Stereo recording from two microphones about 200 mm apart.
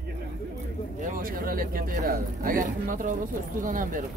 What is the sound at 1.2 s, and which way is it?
Speech, 45° right (ahead or behind).